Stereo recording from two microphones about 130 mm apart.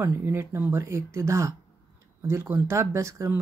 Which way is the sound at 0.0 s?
20° right (ahead or behind).